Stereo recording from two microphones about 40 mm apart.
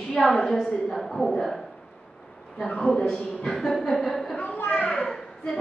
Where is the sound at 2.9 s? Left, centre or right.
Centre.